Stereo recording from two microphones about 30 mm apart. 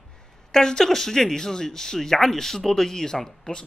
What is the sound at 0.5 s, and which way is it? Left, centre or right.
Speech, centre.